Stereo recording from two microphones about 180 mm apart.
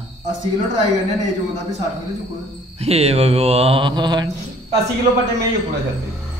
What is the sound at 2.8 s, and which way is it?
Mantra, 35° right (ahead or behind).